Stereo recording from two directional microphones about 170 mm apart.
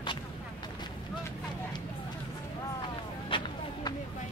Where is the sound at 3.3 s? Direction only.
30° left (ahead or behind).